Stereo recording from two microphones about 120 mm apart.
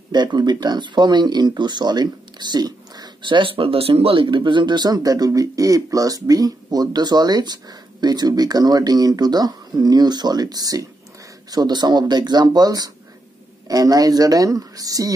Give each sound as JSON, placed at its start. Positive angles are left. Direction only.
{"t": 0.1, "sound": "speech", "side_deg": -35}